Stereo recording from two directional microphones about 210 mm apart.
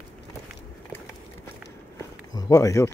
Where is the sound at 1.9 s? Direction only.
15° left (ahead or behind).